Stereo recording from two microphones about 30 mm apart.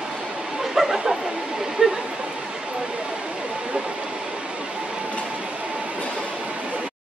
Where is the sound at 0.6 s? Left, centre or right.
Centre.